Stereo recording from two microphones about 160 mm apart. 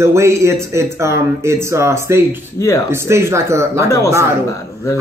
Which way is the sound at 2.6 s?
15° left (ahead or behind).